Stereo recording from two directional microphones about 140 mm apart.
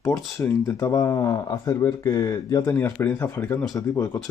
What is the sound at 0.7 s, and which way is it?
Speech, 20° left (ahead or behind).